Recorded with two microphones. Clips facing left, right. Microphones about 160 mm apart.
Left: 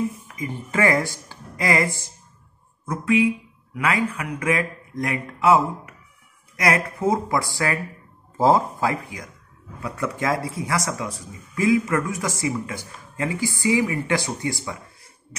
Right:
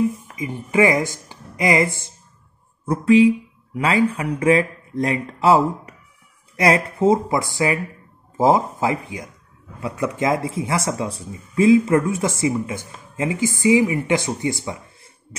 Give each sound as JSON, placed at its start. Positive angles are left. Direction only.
{"t": 0.4, "sound": "speech", "side_deg": -15}